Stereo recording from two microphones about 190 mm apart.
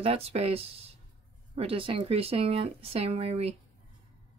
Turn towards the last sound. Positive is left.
turn(degrees=-30)  # may be behind; listen again after turning